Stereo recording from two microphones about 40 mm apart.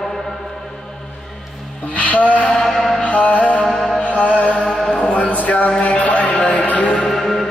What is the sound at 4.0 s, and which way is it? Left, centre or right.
Music, left.